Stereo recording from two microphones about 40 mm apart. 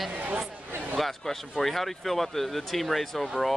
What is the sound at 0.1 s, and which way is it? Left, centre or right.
Speech, right.